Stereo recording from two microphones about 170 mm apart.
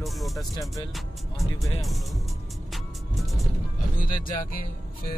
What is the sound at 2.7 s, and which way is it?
Music, centre (ahead or behind).